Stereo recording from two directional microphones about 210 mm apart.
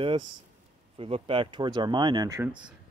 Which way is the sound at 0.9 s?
25° right (ahead or behind).